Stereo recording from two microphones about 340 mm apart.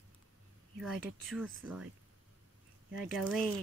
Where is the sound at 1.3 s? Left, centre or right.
Centre.